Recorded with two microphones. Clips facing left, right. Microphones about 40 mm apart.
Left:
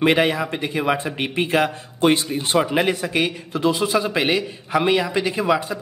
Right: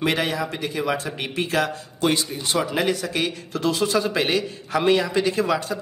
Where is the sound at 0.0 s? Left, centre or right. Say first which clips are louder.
Left 5 dB; left.